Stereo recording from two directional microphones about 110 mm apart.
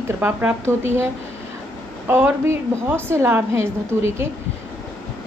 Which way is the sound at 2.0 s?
20° right (ahead or behind).